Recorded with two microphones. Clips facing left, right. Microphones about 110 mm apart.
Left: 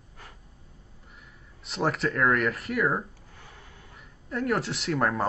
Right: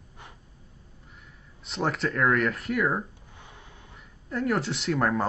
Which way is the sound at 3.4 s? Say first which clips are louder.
Right 1 dB; 20° right (ahead or behind).